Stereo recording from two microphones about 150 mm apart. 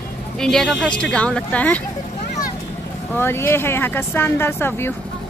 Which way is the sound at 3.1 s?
15° left (ahead or behind).